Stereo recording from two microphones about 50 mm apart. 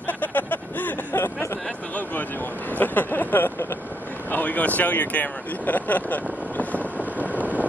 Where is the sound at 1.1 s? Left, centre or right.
Left.